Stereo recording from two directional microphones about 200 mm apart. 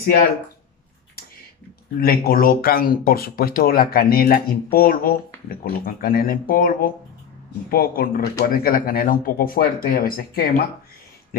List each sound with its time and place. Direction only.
2.0 s speech: 45° left (ahead or behind)